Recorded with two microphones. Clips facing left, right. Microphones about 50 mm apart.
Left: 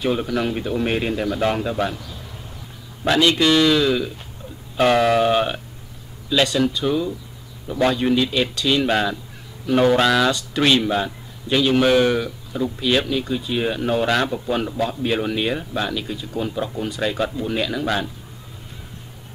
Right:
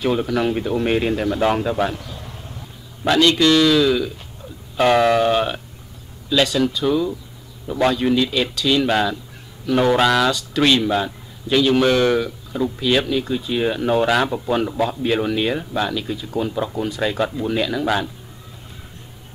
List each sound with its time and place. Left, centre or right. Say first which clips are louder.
0.0 s a man's voice: right 2 dB; centre
3.0 s a man's voice: right 2 dB; centre